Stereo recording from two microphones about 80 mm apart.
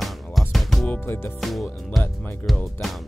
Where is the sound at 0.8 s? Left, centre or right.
Left.